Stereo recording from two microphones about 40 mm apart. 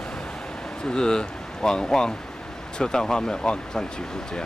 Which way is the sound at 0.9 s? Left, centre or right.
Centre.